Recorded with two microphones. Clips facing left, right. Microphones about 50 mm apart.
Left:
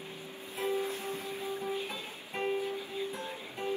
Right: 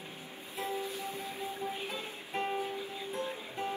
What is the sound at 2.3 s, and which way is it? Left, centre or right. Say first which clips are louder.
Music: left 1 dB; centre.